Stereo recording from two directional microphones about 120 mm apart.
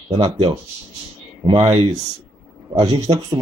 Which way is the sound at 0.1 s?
40° right (ahead or behind).